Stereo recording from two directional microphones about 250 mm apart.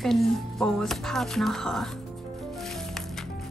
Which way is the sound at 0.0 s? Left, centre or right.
Centre.